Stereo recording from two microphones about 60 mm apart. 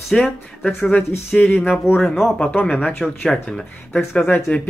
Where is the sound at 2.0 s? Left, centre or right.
Centre.